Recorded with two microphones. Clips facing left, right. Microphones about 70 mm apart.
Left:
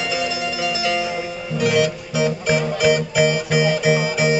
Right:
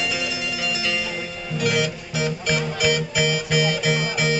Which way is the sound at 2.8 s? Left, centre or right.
Centre.